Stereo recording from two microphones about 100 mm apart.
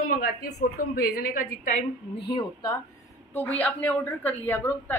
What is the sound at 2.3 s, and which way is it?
Speech, 40° left (ahead or behind).